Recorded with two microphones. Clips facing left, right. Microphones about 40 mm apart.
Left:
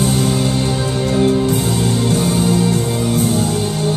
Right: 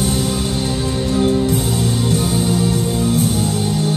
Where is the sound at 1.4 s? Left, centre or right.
Left.